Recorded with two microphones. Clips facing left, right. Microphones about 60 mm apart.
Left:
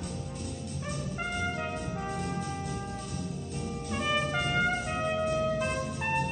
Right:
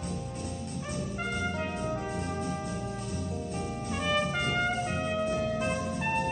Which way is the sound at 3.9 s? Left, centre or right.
Centre.